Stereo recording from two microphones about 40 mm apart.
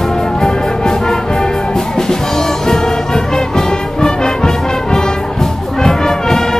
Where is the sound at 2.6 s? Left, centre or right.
Centre.